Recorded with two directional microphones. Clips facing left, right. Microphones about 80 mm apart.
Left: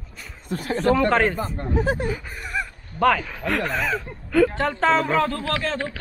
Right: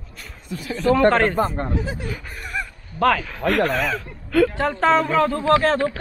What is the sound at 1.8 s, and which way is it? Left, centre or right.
Speech, left.